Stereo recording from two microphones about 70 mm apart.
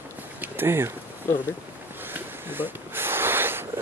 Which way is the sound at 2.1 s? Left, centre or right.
Right.